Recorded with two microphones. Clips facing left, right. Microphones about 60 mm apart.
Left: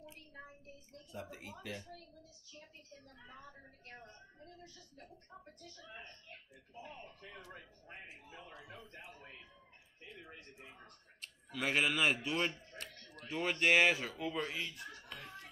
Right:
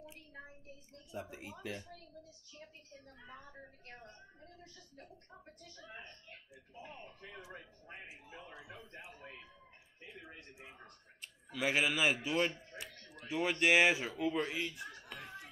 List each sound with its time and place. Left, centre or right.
1.2 s a woman's voice: centre
3.1 s a woman's voice: right
7.5 s a man's voice: centre
8.5 s a man's voice: centre
8.7 s a sound: centre
9.1 s a sound: right
10.2 s a man's voice: centre